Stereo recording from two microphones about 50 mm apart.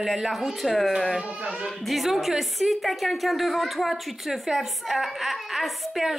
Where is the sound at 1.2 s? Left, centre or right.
Right.